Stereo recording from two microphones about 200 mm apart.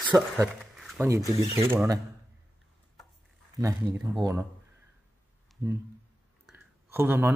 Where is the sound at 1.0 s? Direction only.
15° right (ahead or behind).